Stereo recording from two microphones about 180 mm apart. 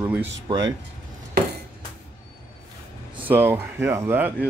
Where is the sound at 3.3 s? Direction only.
10° right (ahead or behind).